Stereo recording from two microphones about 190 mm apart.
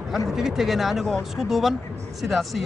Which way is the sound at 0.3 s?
Centre (ahead or behind).